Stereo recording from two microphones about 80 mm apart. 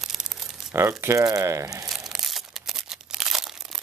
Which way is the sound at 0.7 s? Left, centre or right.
Right.